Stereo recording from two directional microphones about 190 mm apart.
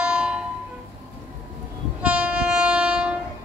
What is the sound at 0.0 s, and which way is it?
Music, 5° right (ahead or behind).